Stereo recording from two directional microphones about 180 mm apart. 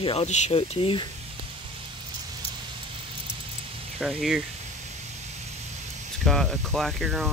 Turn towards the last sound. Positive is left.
turn(degrees=0)  # may be behind; listen again after turning